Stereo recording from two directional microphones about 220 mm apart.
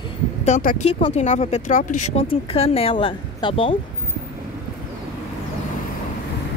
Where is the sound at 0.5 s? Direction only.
35° left (ahead or behind).